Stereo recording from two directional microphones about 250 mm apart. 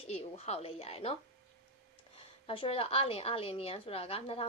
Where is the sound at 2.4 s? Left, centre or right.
Left.